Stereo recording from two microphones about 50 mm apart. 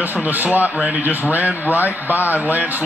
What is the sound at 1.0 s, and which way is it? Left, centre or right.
A man's voice, right.